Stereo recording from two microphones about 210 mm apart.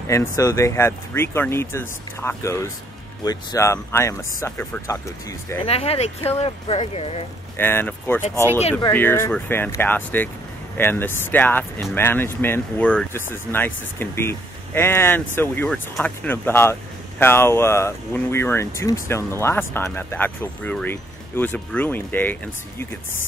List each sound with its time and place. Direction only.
0.1 s speech: 15° left (ahead or behind)
5.7 s speech: 30° left (ahead or behind)
7.5 s speech: 10° left (ahead or behind)